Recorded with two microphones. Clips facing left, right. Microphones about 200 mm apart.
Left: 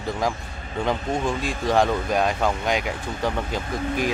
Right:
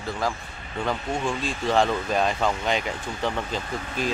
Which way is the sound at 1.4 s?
15° left (ahead or behind).